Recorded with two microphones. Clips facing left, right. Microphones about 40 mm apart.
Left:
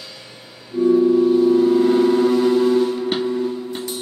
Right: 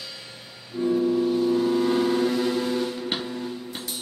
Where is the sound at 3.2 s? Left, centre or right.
Centre.